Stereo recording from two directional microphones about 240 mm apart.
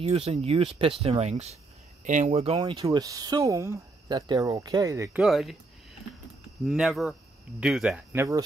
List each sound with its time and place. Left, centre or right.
0.0 s speech: right; by 5.6 s centre
6.6 s speech: centre